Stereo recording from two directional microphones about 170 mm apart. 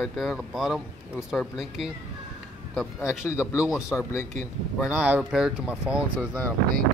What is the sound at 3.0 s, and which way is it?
Speech, 15° left (ahead or behind).